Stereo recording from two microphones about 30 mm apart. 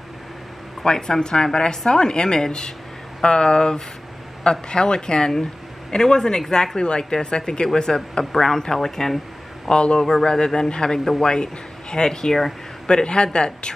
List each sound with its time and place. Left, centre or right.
0.8 s speech: centre
8.3 s speech: centre
9.7 s speech: left
9.9 s speech: left